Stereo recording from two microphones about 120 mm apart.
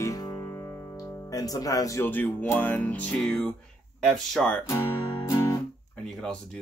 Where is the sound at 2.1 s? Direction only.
15° left (ahead or behind).